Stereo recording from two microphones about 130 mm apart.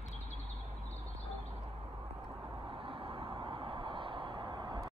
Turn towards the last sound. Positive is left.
turn(degrees=-35)  # may be behind; listen again after turning